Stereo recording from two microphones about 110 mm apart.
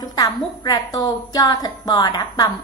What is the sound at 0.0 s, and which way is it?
A woman's voice, 40° left (ahead or behind).